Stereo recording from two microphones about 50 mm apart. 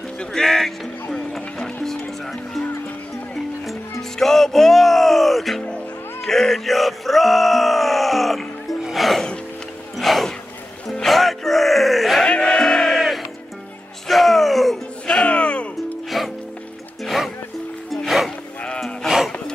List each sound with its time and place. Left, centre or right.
0.2 s music: centre
4.2 s music: centre
6.2 s groan: centre
8.9 s music: centre
12.3 s music: left
12.5 s crowd: centre
14.0 s music: centre
15.2 s music: left
16.1 s music: centre